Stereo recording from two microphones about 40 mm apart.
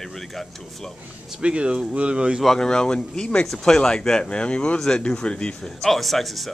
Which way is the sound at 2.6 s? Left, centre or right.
Centre.